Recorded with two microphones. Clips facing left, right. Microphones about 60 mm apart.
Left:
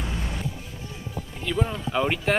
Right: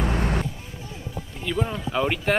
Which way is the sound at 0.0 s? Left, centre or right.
Right.